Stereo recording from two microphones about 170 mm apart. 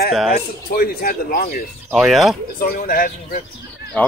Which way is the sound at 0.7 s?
60° left (ahead or behind).